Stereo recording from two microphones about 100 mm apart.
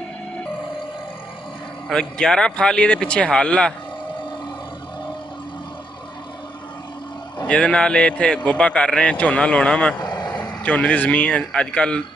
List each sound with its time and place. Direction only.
1.9 s speech: 5° left (ahead or behind)
7.4 s speech: 10° left (ahead or behind)
10.0 s vehicle: 40° left (ahead or behind)
10.3 s a man's voice: 15° left (ahead or behind)